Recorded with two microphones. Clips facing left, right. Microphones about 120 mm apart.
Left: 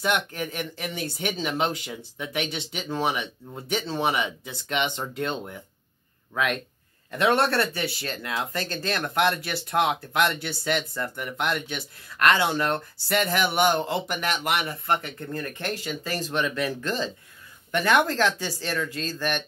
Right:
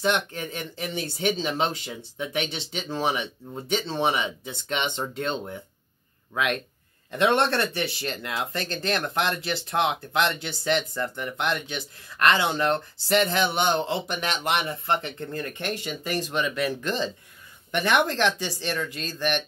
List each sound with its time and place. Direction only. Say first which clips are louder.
0.0 s speech: right 1 dB; 25° right (ahead or behind)
7.1 s speech: even; 20° right (ahead or behind)